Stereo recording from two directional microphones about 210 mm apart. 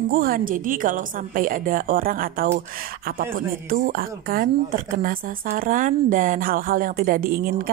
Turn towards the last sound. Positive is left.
turn(degrees=-45)  # may be behind; listen again after turning